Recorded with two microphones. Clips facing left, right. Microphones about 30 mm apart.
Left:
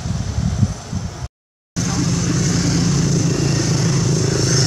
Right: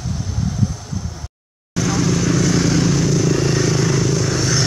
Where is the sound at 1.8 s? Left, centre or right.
Centre.